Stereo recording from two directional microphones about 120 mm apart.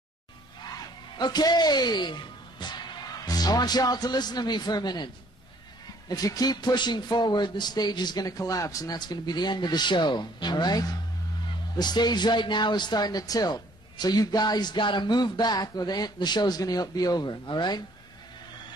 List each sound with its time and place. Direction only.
1.1 s a man's voice: 35° left (ahead or behind)